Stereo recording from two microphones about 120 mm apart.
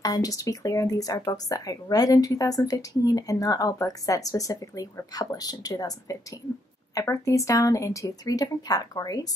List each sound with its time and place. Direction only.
0.0 s speech: 30° left (ahead or behind)